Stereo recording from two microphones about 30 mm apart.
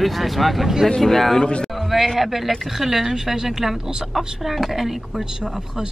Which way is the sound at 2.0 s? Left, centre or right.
Centre.